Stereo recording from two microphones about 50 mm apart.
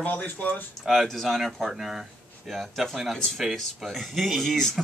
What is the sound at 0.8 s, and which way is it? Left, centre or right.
Speech, centre.